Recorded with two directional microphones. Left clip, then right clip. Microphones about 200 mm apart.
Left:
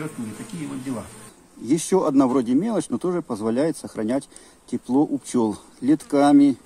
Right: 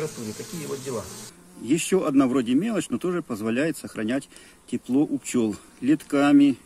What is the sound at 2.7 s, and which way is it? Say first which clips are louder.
Speech: left 3 dB; 20° right (ahead or behind).